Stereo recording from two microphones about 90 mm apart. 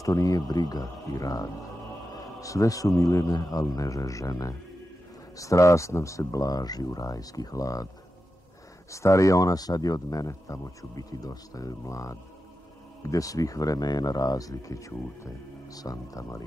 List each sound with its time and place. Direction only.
0.0 s speech: 40° left (ahead or behind)
8.9 s speech: 35° left (ahead or behind)